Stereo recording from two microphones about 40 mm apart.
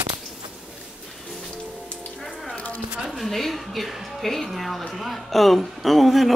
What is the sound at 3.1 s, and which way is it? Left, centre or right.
Music, centre.